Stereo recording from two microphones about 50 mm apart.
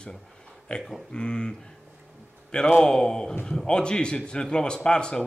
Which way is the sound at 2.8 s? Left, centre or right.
Centre.